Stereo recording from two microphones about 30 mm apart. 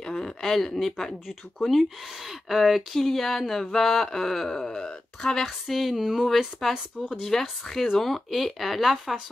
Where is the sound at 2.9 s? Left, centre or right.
Centre.